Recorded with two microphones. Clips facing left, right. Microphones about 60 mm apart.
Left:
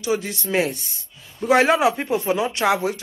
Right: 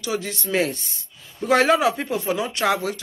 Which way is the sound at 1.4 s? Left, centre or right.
Left.